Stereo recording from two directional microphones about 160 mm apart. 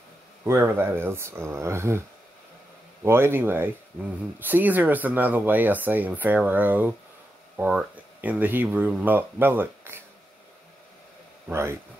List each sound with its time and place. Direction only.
0.5 s speech: 15° right (ahead or behind)
3.0 s speech: 15° right (ahead or behind)
11.4 s speech: 15° right (ahead or behind)